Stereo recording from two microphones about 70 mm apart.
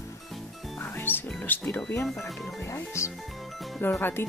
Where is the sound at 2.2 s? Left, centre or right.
Centre.